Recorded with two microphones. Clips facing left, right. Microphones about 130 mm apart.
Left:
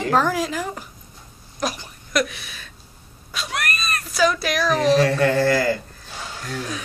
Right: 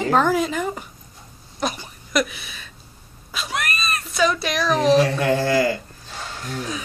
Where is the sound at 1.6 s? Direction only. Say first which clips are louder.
Even; centre (ahead or behind).